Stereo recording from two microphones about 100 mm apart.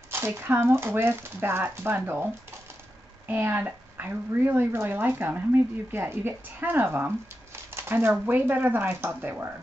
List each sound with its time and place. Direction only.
0.1 s speech: 25° right (ahead or behind)
3.3 s speech: 20° right (ahead or behind)